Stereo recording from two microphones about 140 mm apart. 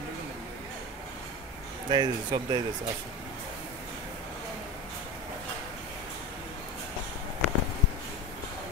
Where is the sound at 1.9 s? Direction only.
30° right (ahead or behind).